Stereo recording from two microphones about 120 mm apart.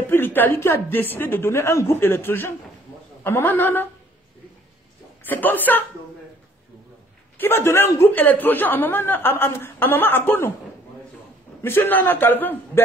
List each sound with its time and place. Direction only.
0.1 s a woman's voice: 15° left (ahead or behind)
5.2 s a man's voice: 15° left (ahead or behind)
7.3 s a man's voice: 20° left (ahead or behind)
11.6 s a man's voice: 20° left (ahead or behind)